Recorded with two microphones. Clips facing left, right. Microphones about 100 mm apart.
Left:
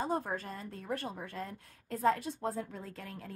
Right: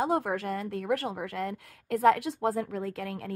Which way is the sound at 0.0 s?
85° right.